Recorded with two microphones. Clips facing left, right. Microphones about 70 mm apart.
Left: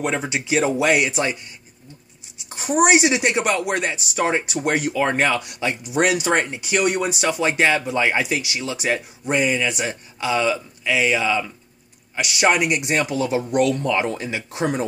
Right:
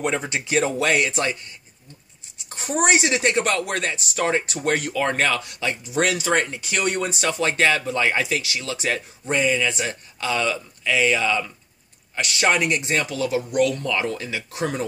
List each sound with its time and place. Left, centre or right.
0.0 s speech: centre
2.5 s speech: centre